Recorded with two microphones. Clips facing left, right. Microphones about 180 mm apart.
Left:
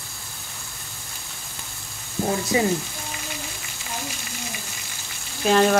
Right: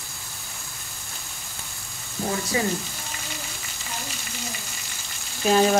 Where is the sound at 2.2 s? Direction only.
10° left (ahead or behind).